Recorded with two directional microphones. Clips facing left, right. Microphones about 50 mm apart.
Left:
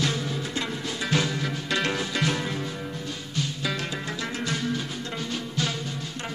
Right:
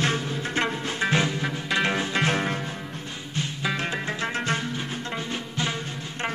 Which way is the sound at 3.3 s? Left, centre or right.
Right.